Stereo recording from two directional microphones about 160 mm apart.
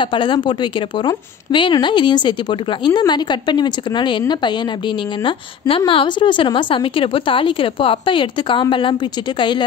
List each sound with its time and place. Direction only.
0.0 s a woman's voice: 30° left (ahead or behind)